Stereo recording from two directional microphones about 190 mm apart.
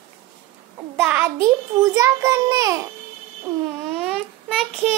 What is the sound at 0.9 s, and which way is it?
A child's voice, 10° right (ahead or behind).